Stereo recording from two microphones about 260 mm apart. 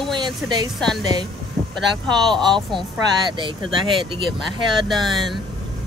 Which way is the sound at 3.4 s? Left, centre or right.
Centre.